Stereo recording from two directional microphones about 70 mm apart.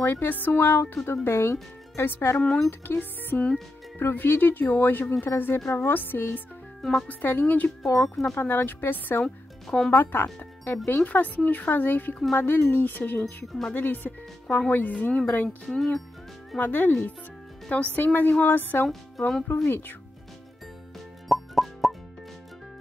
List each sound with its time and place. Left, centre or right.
0.0 s speech: left
2.4 s speech: centre
2.8 s speech: left
6.8 s speech: centre
7.1 s speech: left
9.2 s speech: centre
9.8 s speech: left
15.6 s speech: centre
16.5 s speech: left
18.9 s speech: centre
19.5 s speech: left
21.3 s music: centre